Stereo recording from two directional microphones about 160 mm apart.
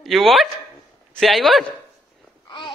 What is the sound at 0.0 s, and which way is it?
Speech, centre (ahead or behind).